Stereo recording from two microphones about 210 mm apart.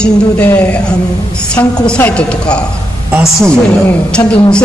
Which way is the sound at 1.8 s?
5° left (ahead or behind).